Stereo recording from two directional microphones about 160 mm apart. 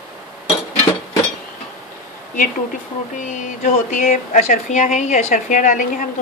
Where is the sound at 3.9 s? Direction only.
50° left (ahead or behind).